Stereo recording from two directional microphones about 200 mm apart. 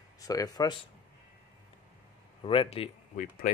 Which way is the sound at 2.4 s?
25° left (ahead or behind).